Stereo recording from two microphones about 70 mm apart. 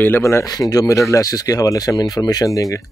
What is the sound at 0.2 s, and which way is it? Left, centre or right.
Speech, left.